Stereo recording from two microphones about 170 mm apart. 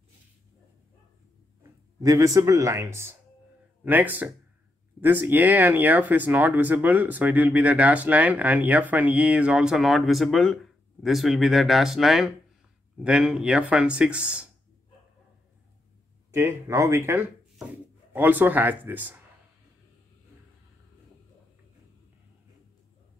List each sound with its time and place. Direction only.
1.6 s speech: 20° right (ahead or behind)
16.3 s speech: 15° right (ahead or behind)